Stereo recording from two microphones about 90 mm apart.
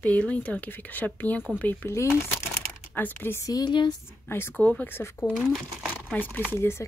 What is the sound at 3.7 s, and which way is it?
Speech, 60° left (ahead or behind).